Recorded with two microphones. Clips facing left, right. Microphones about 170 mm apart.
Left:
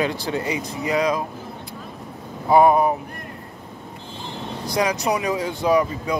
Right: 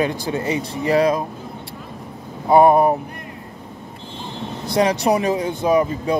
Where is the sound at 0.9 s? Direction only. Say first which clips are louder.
Right 5 dB; 30° right (ahead or behind).